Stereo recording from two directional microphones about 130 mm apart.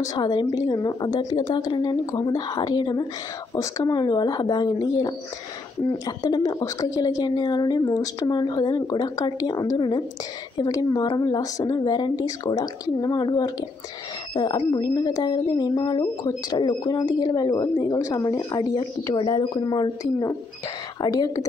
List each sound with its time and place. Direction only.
0.0 s a woman's voice: 30° left (ahead or behind)